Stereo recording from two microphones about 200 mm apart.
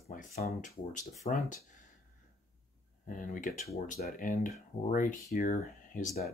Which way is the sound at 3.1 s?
40° left (ahead or behind).